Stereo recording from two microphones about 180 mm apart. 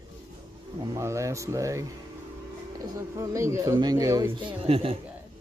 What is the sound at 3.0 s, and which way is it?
Speech, 15° right (ahead or behind).